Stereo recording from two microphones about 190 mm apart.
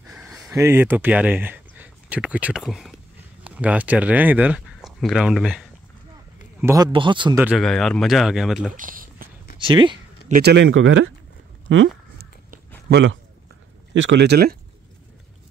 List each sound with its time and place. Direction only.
0.0 s a sound: 5° right (ahead or behind)
0.6 s speech: 10° right (ahead or behind)
6.6 s a man's voice: 15° right (ahead or behind)
7.5 s speech: centre (ahead or behind)
8.7 s a sound: 45° right (ahead or behind)
9.6 s speech: 25° right (ahead or behind)
10.4 s speech: 75° right (ahead or behind); by 11.1 s 90° right
11.7 s speech: 75° right (ahead or behind)
12.9 s speech: 75° right (ahead or behind); by 14.6 s 60° right (ahead or behind)